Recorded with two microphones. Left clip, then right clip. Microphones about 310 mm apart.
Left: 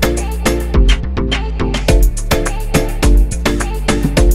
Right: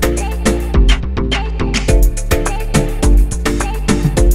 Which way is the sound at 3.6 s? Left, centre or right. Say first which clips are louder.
Left 1 dB; centre.